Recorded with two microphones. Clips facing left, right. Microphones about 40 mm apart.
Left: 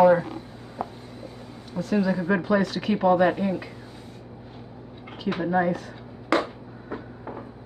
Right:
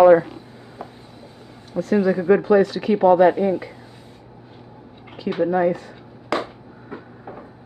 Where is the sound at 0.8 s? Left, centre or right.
Centre.